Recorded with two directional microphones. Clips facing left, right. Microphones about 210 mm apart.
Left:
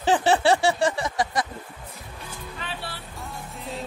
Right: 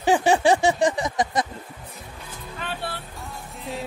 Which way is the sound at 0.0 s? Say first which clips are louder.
Right 2 dB; 15° right (ahead or behind).